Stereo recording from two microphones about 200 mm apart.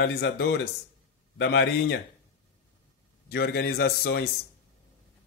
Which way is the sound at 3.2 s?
50° left (ahead or behind).